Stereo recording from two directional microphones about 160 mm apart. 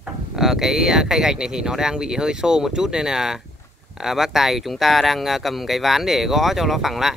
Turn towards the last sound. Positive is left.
turn(degrees=0)  # may be behind; listen again after turning